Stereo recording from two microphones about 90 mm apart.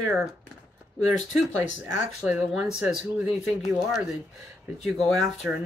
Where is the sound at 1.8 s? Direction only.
15° right (ahead or behind).